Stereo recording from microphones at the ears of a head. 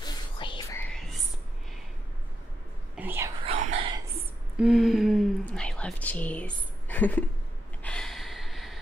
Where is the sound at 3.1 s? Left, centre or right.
Right.